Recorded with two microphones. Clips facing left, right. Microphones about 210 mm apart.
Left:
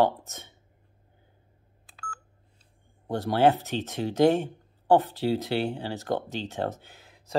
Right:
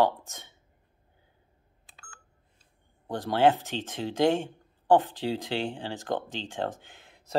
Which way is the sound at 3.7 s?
15° left (ahead or behind).